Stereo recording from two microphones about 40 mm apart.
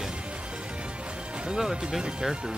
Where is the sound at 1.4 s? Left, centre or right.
Centre.